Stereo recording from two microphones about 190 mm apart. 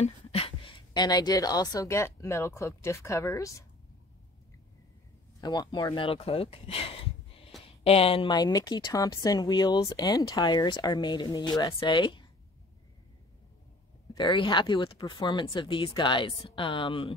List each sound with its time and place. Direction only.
0.0 s speech: 30° left (ahead or behind)
5.4 s a woman's voice: 20° left (ahead or behind)
14.1 s a woman's voice: 25° left (ahead or behind)